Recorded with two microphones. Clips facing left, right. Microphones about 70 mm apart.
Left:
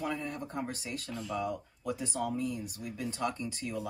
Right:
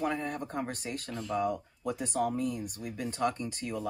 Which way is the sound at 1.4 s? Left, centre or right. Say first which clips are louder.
Right 4 dB; right.